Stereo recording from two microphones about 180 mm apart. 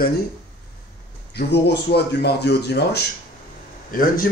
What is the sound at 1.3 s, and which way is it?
Speech, 70° left (ahead or behind).